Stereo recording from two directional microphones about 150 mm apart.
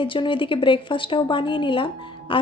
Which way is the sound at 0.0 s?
35° left (ahead or behind).